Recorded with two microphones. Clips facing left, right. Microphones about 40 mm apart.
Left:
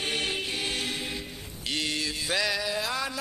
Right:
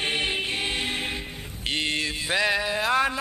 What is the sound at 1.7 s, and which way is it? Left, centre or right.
Mantra, right.